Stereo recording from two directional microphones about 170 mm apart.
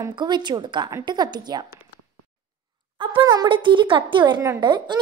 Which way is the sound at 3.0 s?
30° right (ahead or behind).